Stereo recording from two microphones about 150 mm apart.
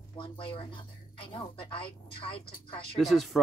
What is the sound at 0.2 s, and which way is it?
A woman's voice, 35° left (ahead or behind).